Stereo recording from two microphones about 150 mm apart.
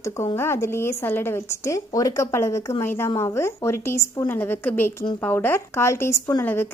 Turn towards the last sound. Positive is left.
turn(degrees=15)  # may be behind; listen again after turning